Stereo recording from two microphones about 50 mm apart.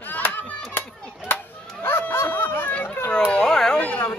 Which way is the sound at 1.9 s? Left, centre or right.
Left.